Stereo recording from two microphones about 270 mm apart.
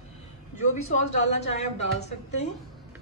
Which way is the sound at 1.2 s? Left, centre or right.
Left.